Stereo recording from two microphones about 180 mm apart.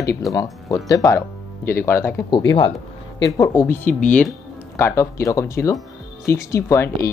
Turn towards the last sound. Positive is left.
turn(degrees=15)  # may be behind; listen again after turning